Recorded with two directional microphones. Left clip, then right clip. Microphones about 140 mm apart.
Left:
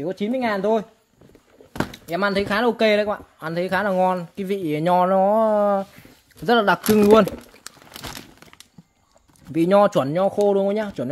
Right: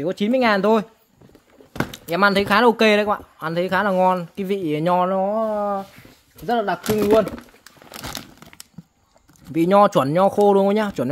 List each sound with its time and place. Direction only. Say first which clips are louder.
0.0 s speech: right 5 dB; 30° right (ahead or behind)
1.9 s speech: right 6 dB; 25° right (ahead or behind); by 5.0 s 5° right (ahead or behind)
5.0 s speech: left 3 dB; 15° left (ahead or behind)
5.5 s speech: left 4 dB; 55° left (ahead or behind)
6.4 s speech: left 4 dB; 90° left
9.5 s speech: right 1 dB; 5° right (ahead or behind)
10.0 s speech: right 3 dB; 30° right (ahead or behind)